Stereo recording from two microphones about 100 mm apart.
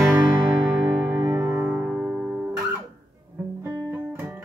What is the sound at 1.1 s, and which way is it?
Music, 20° right (ahead or behind).